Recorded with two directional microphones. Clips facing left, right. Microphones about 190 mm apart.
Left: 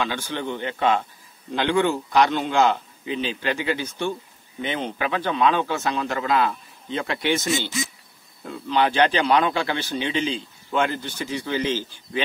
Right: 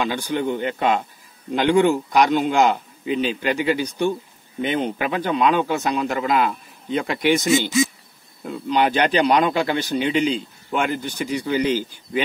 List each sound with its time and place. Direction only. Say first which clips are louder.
0.0 s a man's voice: right 4 dB; 15° right (ahead or behind)